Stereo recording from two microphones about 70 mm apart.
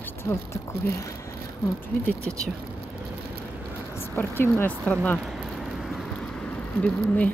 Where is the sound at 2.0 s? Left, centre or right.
Centre.